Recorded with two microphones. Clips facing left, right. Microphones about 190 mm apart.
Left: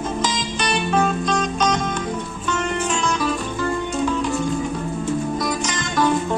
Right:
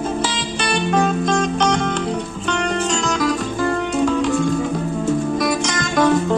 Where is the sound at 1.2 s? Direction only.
50° right (ahead or behind).